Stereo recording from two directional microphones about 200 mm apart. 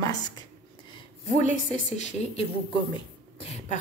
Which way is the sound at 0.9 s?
35° left (ahead or behind).